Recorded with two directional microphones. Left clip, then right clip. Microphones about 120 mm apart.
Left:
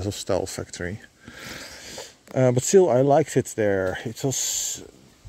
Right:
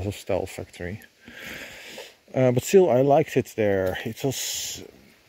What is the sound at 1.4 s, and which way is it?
Speech, 20° left (ahead or behind).